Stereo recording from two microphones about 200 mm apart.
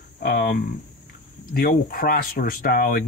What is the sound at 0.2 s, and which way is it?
Speech, 50° left (ahead or behind).